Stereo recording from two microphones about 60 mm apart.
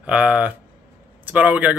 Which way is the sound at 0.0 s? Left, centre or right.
Centre.